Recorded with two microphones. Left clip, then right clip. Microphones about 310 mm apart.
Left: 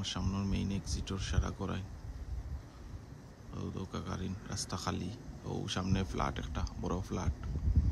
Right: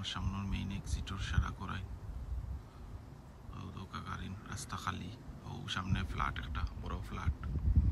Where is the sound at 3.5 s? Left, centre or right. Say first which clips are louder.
Left 4 dB; centre.